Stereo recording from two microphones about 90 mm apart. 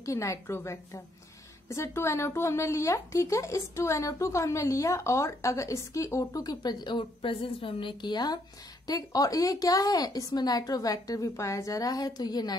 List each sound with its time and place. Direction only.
0.0 s a woman's voice: 35° left (ahead or behind)